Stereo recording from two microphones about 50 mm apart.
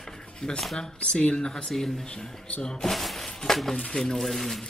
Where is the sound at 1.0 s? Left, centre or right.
Centre.